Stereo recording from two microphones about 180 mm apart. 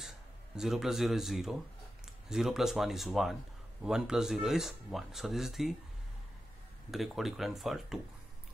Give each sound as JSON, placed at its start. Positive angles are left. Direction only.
{"t": 0.6, "sound": "speech", "side_deg": 0}
{"t": 6.9, "sound": "speech", "side_deg": 0}